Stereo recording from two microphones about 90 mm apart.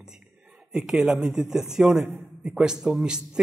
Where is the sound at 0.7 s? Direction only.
5° right (ahead or behind).